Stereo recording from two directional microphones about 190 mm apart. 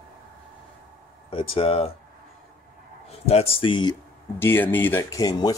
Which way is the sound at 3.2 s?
30° left (ahead or behind).